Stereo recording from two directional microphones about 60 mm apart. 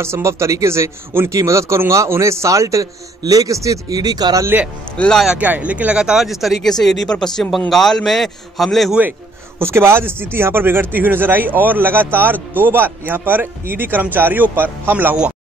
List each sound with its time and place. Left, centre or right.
0.0 s a man's voice: right
1.3 s a man's voice: right
5.4 s speech: right
5.9 s speech: centre
9.6 s speech: right